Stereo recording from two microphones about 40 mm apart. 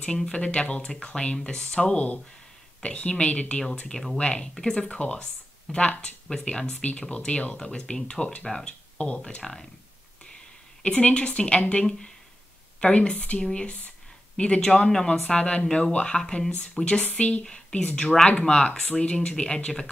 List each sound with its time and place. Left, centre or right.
0.2 s speech: left
9.4 s speech: centre
10.8 s speech: left
14.7 s speech: centre; by 17.5 s left
17.5 s speech: centre